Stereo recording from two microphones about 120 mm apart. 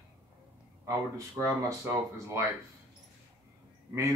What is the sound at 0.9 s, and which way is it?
Speech, 25° right (ahead or behind).